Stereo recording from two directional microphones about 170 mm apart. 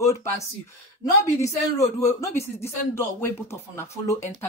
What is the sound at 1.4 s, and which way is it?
Speech, 20° left (ahead or behind).